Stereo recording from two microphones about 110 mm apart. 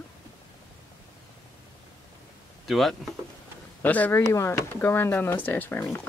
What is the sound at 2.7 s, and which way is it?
Speech, centre (ahead or behind).